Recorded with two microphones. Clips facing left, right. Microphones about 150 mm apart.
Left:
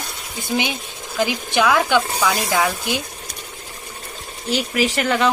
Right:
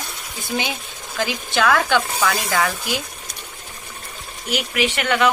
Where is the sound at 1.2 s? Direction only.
15° left (ahead or behind).